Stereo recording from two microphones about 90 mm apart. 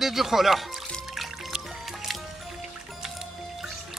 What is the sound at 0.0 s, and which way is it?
Music, 5° right (ahead or behind).